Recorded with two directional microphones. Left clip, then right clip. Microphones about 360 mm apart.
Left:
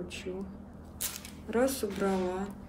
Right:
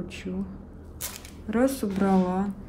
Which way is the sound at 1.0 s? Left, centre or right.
Centre.